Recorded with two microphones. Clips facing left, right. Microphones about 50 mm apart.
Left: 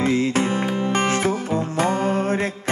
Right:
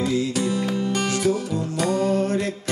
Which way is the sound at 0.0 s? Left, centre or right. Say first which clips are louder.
Left 3 dB; left.